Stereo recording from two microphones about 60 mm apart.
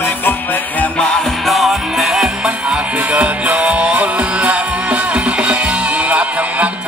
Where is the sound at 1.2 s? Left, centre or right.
Centre.